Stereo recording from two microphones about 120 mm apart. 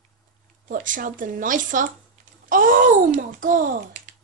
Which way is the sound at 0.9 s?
90° right.